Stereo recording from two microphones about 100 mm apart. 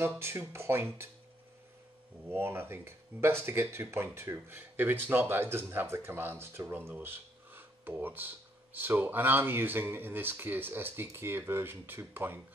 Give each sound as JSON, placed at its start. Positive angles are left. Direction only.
{"t": 0.0, "sound": "speech", "side_deg": -25}
{"t": 2.2, "sound": "speech", "side_deg": -25}